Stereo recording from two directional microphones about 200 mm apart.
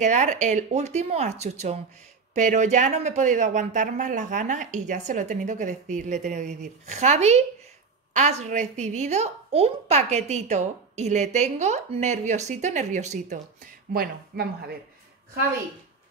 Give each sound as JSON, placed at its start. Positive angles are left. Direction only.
{"t": 0.0, "sound": "a woman's voice", "side_deg": -35}
{"t": 13.9, "sound": "speech", "side_deg": -50}